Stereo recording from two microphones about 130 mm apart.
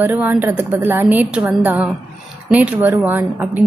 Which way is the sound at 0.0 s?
15° right (ahead or behind).